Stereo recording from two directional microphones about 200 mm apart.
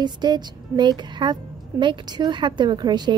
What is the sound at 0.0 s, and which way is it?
A woman's voice, 20° right (ahead or behind).